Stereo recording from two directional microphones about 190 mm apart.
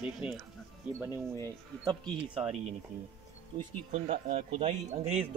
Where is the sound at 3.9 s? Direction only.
35° right (ahead or behind).